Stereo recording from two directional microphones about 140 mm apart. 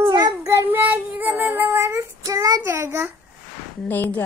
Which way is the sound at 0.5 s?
15° right (ahead or behind).